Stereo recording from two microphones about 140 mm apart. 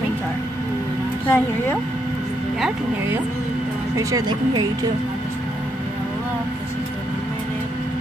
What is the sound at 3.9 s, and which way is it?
Speech, 30° right (ahead or behind).